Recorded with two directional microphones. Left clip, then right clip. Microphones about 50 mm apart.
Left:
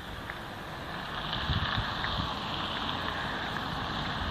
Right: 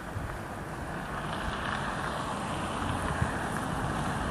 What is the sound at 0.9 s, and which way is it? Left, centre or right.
Vehicle, right.